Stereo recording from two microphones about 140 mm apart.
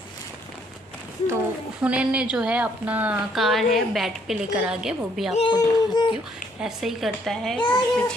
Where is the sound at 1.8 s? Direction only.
10° right (ahead or behind).